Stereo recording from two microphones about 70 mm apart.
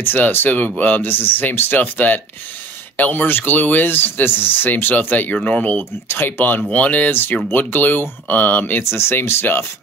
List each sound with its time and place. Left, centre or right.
0.0 s speech: left
8.8 s speech: left